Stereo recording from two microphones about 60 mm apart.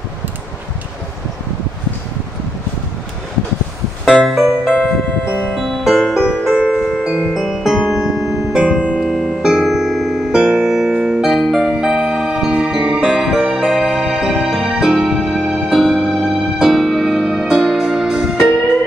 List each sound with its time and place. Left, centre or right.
4.0 s music: centre
4.7 s music: left
5.5 s music: centre
9.0 s music: centre
9.4 s music: centre